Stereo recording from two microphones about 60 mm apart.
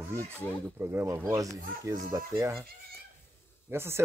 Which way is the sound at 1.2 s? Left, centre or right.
Right.